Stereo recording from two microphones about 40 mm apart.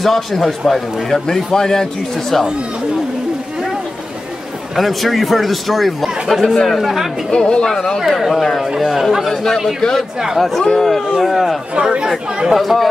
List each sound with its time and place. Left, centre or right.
0.0 s a man's voice: centre
4.7 s speech: centre
6.4 s a man's voice: centre
6.8 s speech: centre
7.2 s a man's voice: left
8.7 s speech: centre
9.3 s a man's voice: centre
10.1 s speech: centre
10.6 s speech: centre
11.1 s speech: centre
11.8 s speech: centre
12.5 s speech: centre